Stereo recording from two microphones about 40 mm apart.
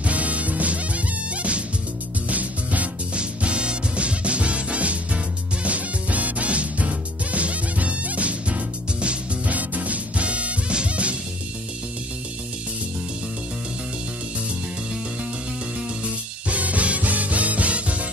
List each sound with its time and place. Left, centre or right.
0.0 s music: right
3.2 s music: right
16.4 s music: right